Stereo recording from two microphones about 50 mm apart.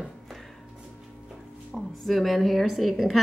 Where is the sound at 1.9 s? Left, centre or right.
Centre.